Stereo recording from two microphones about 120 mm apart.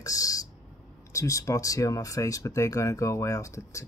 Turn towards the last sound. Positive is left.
turn(degrees=25)  # may be behind; listen again after turning